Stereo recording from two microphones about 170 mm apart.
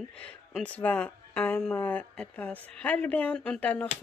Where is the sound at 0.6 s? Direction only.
10° left (ahead or behind).